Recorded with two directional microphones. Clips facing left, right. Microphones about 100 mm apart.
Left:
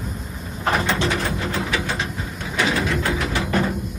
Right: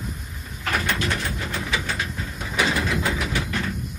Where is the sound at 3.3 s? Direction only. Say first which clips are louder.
Left 6 dB; 45° left (ahead or behind).